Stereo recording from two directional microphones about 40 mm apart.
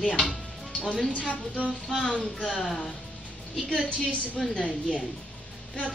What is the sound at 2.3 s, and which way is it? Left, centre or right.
Speech, left.